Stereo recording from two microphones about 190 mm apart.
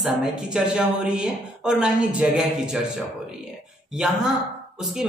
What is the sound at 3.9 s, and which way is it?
A woman's voice, centre (ahead or behind).